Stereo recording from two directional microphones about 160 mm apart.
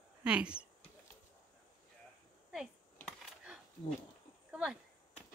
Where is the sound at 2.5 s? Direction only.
Centre (ahead or behind).